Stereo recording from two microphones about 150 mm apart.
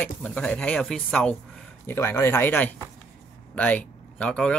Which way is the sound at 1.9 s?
15° left (ahead or behind).